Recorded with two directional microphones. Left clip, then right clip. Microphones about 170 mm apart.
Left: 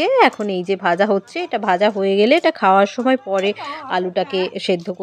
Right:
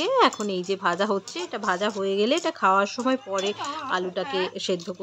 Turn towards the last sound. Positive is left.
turn(degrees=30)  # may be behind; listen again after turning